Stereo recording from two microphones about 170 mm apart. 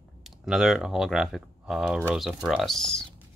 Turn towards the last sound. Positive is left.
turn(degrees=5)  # may be behind; listen again after turning